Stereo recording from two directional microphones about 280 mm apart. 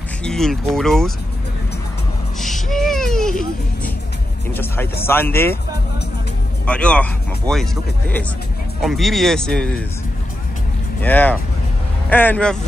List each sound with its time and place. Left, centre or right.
0.2 s speech: centre
2.4 s a sound: centre
4.6 s speech: centre
6.6 s speech: centre
8.8 s speech: centre
11.0 s speech: centre